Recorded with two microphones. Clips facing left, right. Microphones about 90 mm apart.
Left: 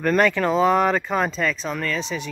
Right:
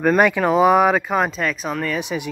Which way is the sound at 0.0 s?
10° right (ahead or behind).